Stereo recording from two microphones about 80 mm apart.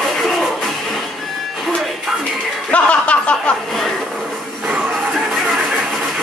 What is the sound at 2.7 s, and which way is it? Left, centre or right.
Chuckle, centre.